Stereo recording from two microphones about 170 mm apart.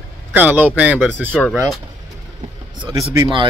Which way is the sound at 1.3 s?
5° left (ahead or behind).